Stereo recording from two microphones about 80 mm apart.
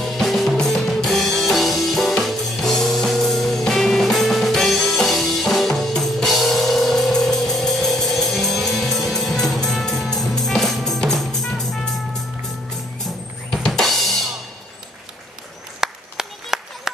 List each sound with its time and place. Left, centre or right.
0.0 s drum kit: centre
15.8 s clapping: centre